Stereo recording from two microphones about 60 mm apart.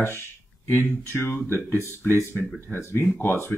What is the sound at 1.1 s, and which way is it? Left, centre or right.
Speech, left.